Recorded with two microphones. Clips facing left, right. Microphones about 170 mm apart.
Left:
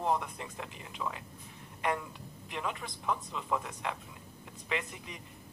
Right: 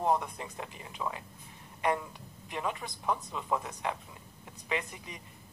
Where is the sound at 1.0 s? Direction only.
20° right (ahead or behind).